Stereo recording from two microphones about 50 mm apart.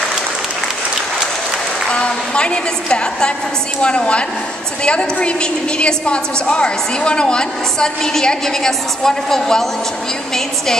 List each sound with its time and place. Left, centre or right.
1.9 s a woman's voice: centre